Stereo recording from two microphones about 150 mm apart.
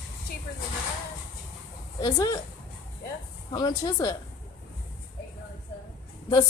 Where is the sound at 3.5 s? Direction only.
25° left (ahead or behind).